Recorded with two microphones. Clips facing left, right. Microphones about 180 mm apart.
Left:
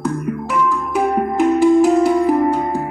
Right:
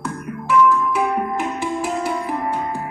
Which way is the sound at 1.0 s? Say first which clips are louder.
Left 5 dB; 45° left (ahead or behind).